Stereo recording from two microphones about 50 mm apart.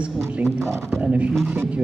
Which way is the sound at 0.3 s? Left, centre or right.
Right.